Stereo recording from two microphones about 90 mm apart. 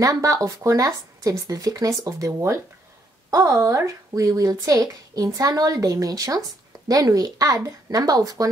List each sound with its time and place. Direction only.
0.0 s a woman's voice: 40° right (ahead or behind)